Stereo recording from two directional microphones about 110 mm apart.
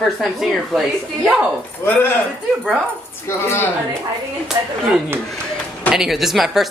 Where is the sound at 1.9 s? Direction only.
20° left (ahead or behind).